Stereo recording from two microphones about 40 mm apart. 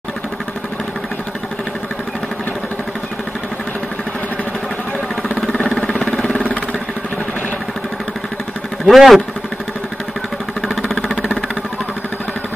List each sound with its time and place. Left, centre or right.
5.7 s engine: centre
5.9 s engine: centre
8.8 s speech: centre